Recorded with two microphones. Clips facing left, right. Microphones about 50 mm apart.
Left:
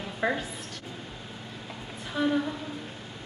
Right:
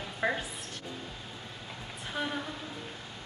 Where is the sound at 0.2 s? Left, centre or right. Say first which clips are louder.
Left 3 dB; centre.